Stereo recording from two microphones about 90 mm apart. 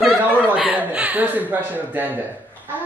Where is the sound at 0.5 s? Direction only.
15° right (ahead or behind).